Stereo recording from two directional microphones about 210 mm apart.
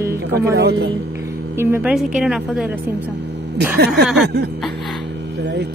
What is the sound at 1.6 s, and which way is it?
A woman's voice, 10° right (ahead or behind).